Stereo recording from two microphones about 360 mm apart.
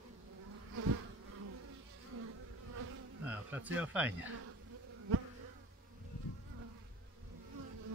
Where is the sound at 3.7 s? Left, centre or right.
Centre.